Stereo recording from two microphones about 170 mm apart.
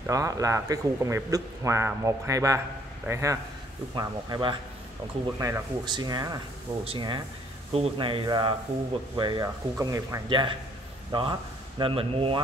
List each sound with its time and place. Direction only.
0.0 s a man's voice: 20° right (ahead or behind)